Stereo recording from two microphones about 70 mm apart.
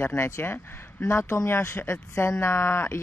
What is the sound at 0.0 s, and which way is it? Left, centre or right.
Speech, left.